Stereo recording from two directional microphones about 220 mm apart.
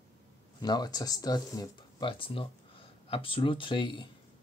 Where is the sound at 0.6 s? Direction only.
20° left (ahead or behind).